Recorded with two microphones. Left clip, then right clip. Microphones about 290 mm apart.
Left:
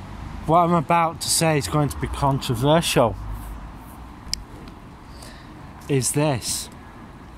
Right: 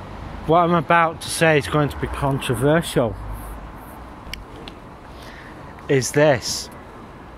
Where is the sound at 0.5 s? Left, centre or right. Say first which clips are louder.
Right 2 dB; centre.